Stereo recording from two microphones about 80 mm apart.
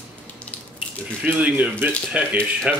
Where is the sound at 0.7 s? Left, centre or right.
Centre.